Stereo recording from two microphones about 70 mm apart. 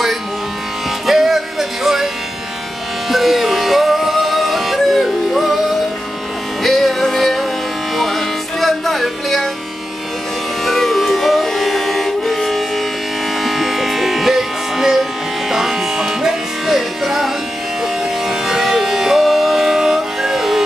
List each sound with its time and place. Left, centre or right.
1.0 s music: centre
3.1 s music: centre
10.6 s music: centre
18.3 s music: centre